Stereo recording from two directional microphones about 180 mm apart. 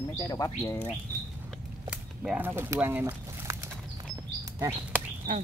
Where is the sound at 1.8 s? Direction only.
5° right (ahead or behind).